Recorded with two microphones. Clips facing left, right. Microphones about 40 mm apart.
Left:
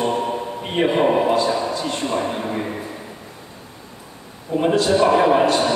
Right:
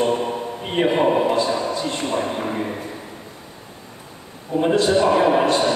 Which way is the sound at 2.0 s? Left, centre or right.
Left.